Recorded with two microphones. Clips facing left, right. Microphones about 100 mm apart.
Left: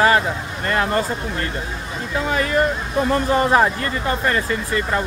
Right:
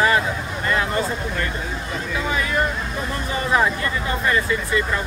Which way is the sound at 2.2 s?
50° left (ahead or behind).